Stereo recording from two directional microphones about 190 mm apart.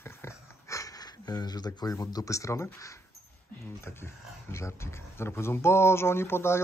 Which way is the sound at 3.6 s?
15° left (ahead or behind).